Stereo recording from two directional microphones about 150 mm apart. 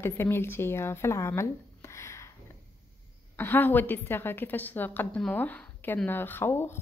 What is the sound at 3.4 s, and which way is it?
A woman's voice, 15° left (ahead or behind).